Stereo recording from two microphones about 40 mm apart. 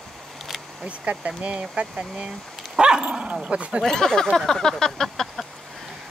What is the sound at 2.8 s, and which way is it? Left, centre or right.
Dog, right.